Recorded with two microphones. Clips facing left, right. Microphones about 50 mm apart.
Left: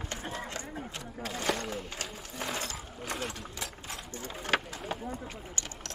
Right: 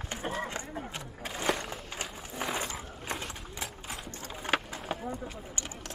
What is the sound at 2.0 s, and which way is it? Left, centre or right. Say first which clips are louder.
Sewing machine: right 2 dB; centre.